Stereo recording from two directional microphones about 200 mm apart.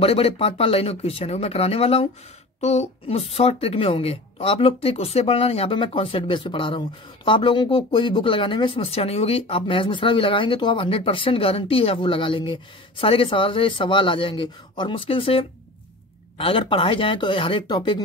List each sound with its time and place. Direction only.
0.0 s speech: 30° left (ahead or behind)